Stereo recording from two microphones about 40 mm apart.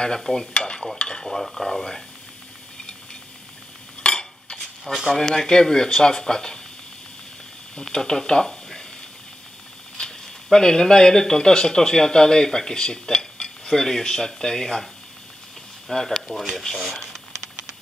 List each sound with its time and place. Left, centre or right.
0.2 s speech: centre
0.6 s stir: centre
0.9 s dishes: centre
4.1 s dishes: centre
4.9 s speech: left
5.2 s speech: centre
7.8 s speech: centre
9.9 s speech: centre
15.9 s speech: centre
16.7 s speech: centre
17.0 s a sound: centre